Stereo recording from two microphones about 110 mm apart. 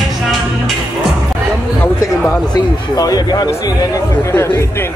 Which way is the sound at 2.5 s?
35° left (ahead or behind).